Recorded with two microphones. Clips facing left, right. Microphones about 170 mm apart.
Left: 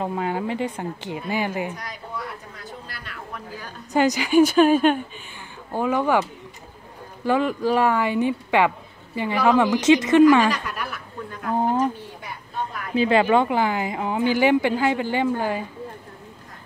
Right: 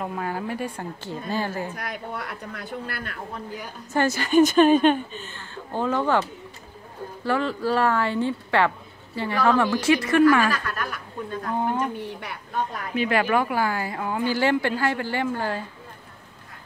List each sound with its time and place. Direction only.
0.0 s speech: 20° left (ahead or behind)
1.8 s speech: 65° right (ahead or behind)
3.9 s speech: 15° left (ahead or behind)
7.2 s speech: 15° left (ahead or behind)
11.4 s speech: 35° left (ahead or behind)
12.9 s speech: 25° left (ahead or behind)